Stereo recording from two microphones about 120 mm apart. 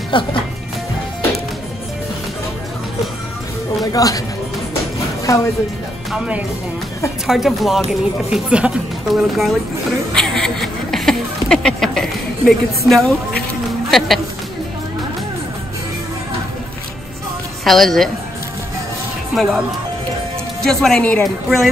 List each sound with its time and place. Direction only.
0.1 s speech: 45° left (ahead or behind)
3.8 s speech: 30° left (ahead or behind)
5.2 s speech: 25° left (ahead or behind)
6.1 s speech: 10° right (ahead or behind)
10.1 s a sound: 5° left (ahead or behind)
13.8 s speech: centre (ahead or behind)
17.6 s speech: centre (ahead or behind)
19.3 s speech: centre (ahead or behind)
20.6 s speech: 5° left (ahead or behind)